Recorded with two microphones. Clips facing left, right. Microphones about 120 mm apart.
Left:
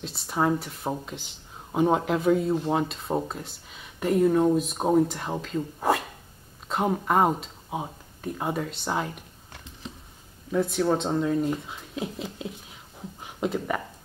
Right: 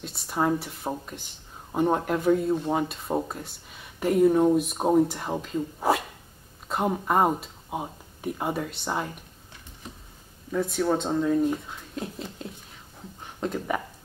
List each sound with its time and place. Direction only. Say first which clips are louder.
0.1 s speech: even; centre (ahead or behind)
9.5 s typing: left 3 dB; 90° left
10.5 s speech: left 1 dB; centre (ahead or behind)
13.2 s a sound: left 2 dB; 5° left (ahead or behind)